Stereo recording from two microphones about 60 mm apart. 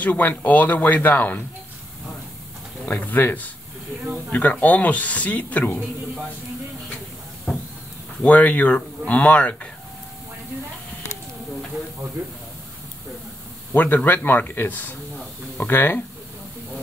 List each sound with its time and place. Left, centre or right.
0.0 s speech: left
2.8 s speech: left
8.2 s speech: left
13.7 s speech: left